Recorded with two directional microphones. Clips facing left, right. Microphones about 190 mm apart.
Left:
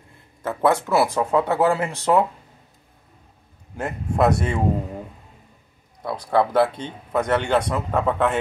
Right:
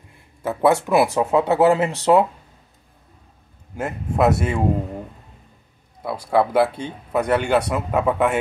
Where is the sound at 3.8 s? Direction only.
5° right (ahead or behind).